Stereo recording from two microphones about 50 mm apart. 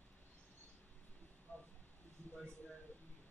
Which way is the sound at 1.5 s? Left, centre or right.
Left.